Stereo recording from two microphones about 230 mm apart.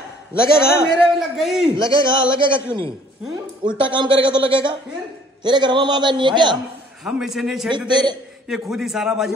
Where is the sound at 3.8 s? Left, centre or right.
Right.